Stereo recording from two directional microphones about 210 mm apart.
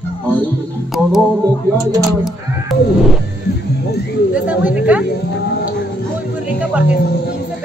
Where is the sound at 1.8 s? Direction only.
15° right (ahead or behind).